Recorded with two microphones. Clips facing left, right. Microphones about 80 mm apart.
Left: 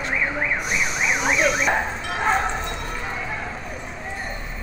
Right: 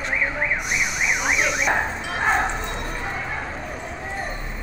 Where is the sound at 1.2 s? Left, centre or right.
Centre.